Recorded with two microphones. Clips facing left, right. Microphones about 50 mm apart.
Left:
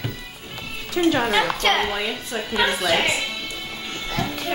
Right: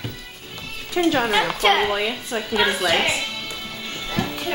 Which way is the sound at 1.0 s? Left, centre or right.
Centre.